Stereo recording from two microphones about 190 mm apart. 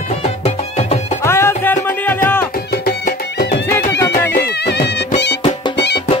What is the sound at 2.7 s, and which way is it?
Music, 55° left (ahead or behind).